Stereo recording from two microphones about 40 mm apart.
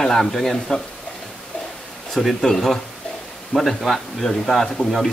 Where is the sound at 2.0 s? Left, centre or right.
Centre.